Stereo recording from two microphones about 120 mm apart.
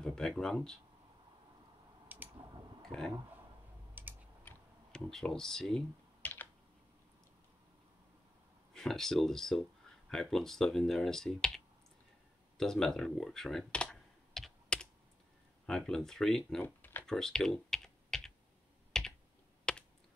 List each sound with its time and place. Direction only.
0.0 s speech: 5° left (ahead or behind)
2.1 s a sound: 15° right (ahead or behind)
2.9 s speech: 5° left (ahead or behind)
4.0 s typing: 15° right (ahead or behind)
4.9 s speech: 5° left (ahead or behind)
6.2 s computer keyboard: 15° left (ahead or behind)
8.7 s speech: 5° left (ahead or behind)
12.5 s computer keyboard: 5° left (ahead or behind)
15.6 s speech: 5° left (ahead or behind)
16.6 s computer keyboard: 15° left (ahead or behind)
17.0 s typing: 5° left (ahead or behind)
18.9 s computer keyboard: 5° left (ahead or behind)
19.7 s a sound: 10° left (ahead or behind)